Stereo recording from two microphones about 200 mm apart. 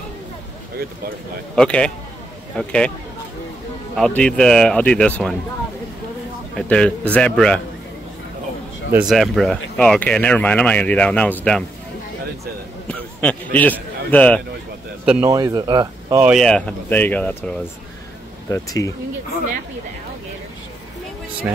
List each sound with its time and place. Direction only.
1.5 s speech: 5° left (ahead or behind)
3.9 s speech: 5° left (ahead or behind)
6.5 s speech: 5° left (ahead or behind)
8.9 s speech: centre (ahead or behind)
12.8 s a sound: 5° left (ahead or behind)
15.0 s speech: 10° right (ahead or behind)
16.2 s speech: 5° right (ahead or behind); by 18.9 s 15° left (ahead or behind)